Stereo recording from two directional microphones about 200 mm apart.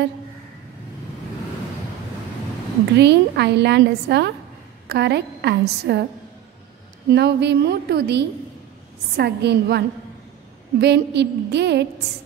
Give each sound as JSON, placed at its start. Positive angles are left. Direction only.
{"t": 3.0, "sound": "a woman's voice", "side_deg": -55}
{"t": 7.1, "sound": "a woman's voice", "side_deg": -55}